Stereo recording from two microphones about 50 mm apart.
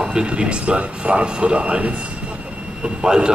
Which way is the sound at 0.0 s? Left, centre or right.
Centre.